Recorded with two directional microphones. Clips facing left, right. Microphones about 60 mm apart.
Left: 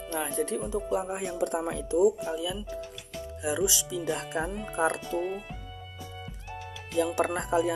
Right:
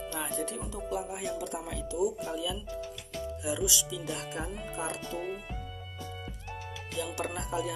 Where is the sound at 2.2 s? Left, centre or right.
Centre.